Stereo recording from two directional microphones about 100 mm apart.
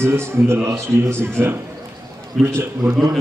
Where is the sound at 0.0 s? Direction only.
25° right (ahead or behind).